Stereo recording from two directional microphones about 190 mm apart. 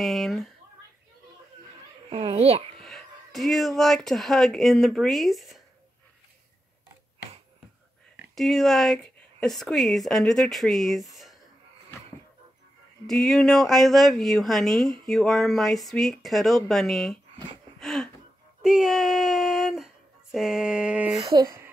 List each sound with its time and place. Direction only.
0.0 s speech: centre (ahead or behind)
2.0 s a child's voice: 30° right (ahead or behind)
2.8 s speech: centre (ahead or behind)
8.4 s speech: centre (ahead or behind)
13.0 s speech: centre (ahead or behind)
17.7 s a sound: centre (ahead or behind)
18.6 s speech: 5° right (ahead or behind)
21.3 s speech: 20° right (ahead or behind)